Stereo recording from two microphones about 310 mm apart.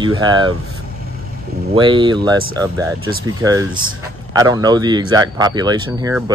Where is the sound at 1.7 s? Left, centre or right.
Centre.